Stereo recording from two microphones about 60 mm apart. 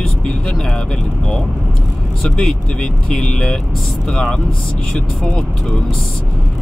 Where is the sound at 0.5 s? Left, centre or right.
Centre.